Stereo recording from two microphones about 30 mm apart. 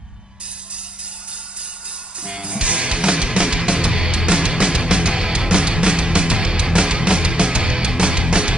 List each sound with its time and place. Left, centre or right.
2.2 s music: right